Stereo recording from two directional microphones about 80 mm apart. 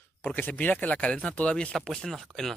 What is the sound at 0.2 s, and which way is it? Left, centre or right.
A man's voice, left.